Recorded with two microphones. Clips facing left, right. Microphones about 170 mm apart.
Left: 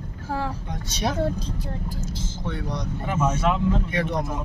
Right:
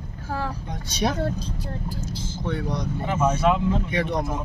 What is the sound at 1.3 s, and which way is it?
Speech, 20° left (ahead or behind).